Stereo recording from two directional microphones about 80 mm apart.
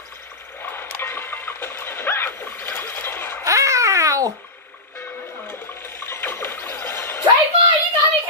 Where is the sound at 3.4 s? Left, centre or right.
Right.